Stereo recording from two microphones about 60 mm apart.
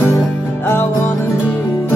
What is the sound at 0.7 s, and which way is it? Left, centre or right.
Music, left.